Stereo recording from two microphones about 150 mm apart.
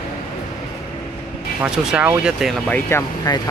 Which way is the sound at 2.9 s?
15° left (ahead or behind).